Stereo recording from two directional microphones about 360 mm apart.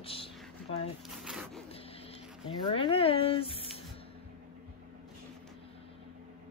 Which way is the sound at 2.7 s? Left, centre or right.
Centre.